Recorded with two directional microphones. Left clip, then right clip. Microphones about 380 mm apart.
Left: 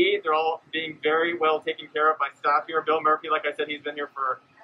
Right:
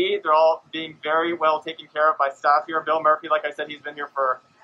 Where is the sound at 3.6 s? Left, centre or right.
Right.